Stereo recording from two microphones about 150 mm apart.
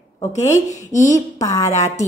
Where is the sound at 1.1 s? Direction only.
20° left (ahead or behind).